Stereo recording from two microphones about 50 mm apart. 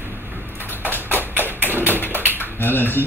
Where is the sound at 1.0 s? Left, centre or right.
Left.